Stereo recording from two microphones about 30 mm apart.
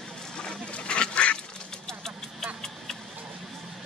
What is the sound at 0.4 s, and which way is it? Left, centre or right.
Duck, left.